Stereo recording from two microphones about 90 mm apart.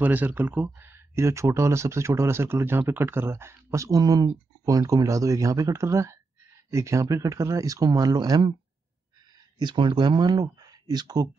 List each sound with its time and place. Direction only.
0.0 s speech: 20° right (ahead or behind); by 8.4 s 45° right (ahead or behind)
9.6 s speech: 60° right (ahead or behind)